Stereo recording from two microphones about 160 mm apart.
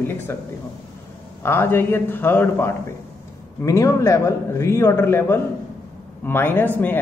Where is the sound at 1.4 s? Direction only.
15° left (ahead or behind).